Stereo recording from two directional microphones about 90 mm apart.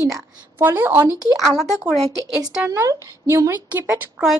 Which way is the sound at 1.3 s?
Centre (ahead or behind).